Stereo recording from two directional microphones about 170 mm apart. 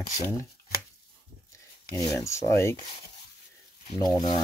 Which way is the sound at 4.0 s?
25° left (ahead or behind).